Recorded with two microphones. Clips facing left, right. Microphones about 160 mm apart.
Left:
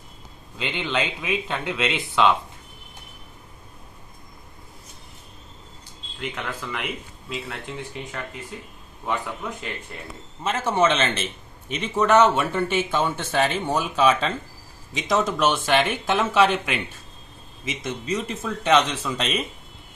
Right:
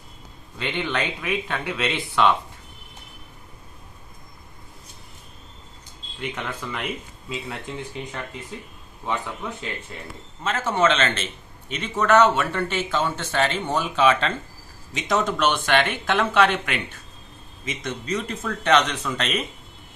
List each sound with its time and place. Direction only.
0.6 s speech: 15° left (ahead or behind)
6.7 s speech: centre (ahead or behind)